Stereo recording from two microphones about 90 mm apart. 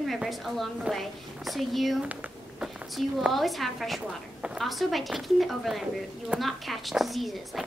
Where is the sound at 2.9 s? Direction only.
Centre (ahead or behind).